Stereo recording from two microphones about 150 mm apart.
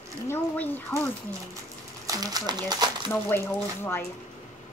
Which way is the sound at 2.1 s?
25° right (ahead or behind).